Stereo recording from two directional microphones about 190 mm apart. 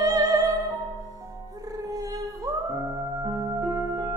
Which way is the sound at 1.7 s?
20° right (ahead or behind).